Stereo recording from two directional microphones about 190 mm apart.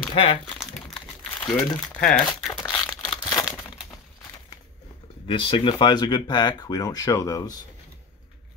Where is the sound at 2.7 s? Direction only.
10° left (ahead or behind).